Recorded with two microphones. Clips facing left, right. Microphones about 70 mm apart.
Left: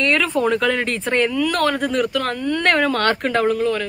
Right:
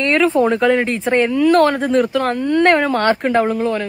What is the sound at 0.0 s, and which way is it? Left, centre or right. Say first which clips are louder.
Speech: right 4 dB; right.